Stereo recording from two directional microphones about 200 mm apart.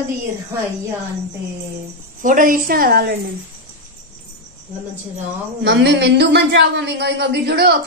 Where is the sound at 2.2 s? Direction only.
40° right (ahead or behind).